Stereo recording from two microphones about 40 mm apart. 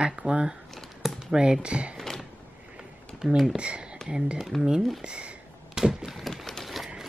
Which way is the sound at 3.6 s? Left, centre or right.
Right.